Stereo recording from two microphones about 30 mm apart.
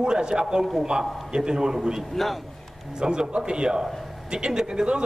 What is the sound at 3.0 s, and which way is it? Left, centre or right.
A man's voice, right.